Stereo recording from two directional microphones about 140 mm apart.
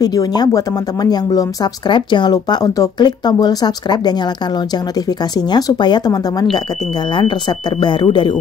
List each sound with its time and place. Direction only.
0.0 s speech: 25° left (ahead or behind)
5.5 s speech: 30° left (ahead or behind)
7.8 s speech: 35° left (ahead or behind)